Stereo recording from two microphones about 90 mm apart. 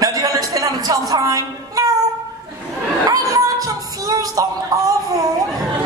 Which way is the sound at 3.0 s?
40° right (ahead or behind).